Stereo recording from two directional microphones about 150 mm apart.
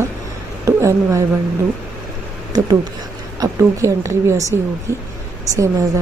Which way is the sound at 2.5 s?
25° right (ahead or behind).